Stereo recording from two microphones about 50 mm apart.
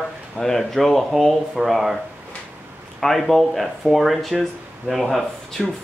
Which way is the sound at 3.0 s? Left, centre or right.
Centre.